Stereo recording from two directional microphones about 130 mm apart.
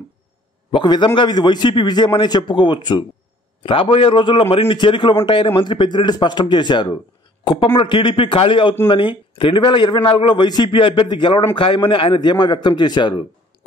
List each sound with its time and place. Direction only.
0.7 s a man's voice: 40° left (ahead or behind)